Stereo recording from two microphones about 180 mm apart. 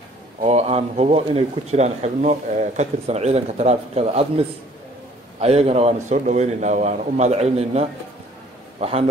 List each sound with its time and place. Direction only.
0.4 s a man's voice: 35° right (ahead or behind)